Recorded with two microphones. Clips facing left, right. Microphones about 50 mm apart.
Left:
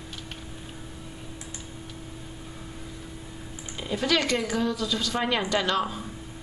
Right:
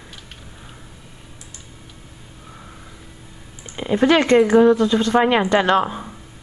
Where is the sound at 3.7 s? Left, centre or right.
Right.